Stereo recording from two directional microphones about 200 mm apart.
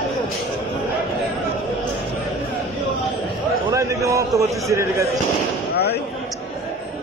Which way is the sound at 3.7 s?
15° right (ahead or behind).